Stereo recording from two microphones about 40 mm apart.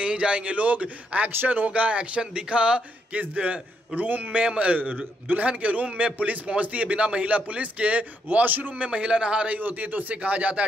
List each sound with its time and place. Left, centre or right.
0.0 s a man's voice: right
3.1 s a man's voice: right
8.7 s speech: right
9.6 s speech: right